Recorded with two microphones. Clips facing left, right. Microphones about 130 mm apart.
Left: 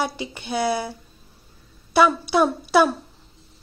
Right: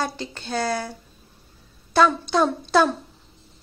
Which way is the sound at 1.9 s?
10° left (ahead or behind).